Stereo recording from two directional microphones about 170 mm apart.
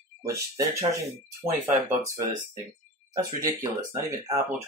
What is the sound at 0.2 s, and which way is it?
Speech, 20° right (ahead or behind).